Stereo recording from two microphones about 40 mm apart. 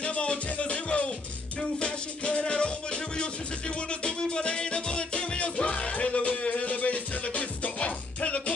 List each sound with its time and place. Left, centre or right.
0.0 s music: left